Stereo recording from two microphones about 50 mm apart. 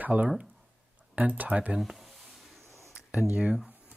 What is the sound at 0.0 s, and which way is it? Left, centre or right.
Speech, right.